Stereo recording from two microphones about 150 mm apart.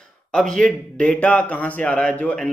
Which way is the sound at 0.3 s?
5° left (ahead or behind).